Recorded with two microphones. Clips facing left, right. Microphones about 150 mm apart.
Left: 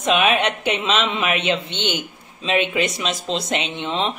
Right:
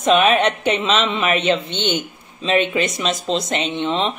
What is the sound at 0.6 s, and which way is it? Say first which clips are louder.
Speech: right 2 dB; 10° left (ahead or behind).